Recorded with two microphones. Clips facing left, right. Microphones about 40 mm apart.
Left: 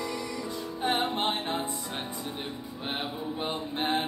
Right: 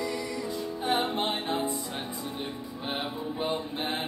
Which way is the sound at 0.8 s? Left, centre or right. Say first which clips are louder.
Even; left.